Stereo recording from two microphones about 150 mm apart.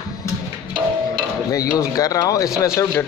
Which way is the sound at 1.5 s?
25° left (ahead or behind).